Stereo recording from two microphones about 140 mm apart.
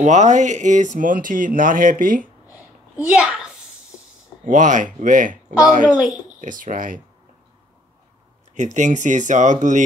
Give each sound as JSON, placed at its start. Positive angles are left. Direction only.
{"t": 0.0, "sound": "speech", "side_deg": -60}
{"t": 3.1, "sound": "a child's voice", "side_deg": -5}
{"t": 4.5, "sound": "speech", "side_deg": -65}
{"t": 5.9, "sound": "a woman's voice", "side_deg": -10}
{"t": 6.4, "sound": "speech", "side_deg": -70}
{"t": 8.5, "sound": "speech", "side_deg": -60}